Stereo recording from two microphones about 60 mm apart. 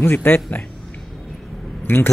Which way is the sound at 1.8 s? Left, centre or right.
Left.